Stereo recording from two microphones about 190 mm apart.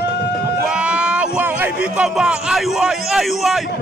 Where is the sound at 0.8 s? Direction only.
5° right (ahead or behind).